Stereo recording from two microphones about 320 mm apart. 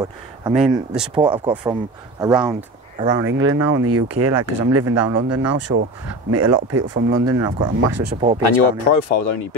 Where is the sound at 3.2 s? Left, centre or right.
Right.